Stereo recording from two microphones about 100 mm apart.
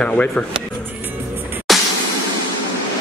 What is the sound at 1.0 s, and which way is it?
Music, 20° right (ahead or behind).